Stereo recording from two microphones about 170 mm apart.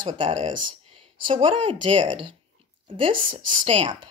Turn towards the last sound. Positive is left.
turn(degrees=-30)  # may be behind; listen again after turning